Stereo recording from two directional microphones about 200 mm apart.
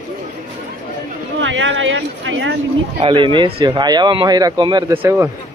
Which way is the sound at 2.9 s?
25° right (ahead or behind).